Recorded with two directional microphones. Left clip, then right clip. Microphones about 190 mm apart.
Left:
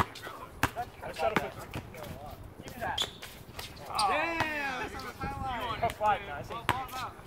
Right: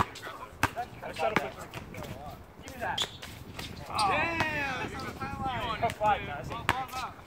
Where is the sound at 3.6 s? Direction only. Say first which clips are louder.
Right 1 dB; 15° left (ahead or behind).